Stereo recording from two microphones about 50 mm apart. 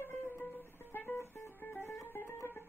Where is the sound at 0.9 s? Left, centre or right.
Left.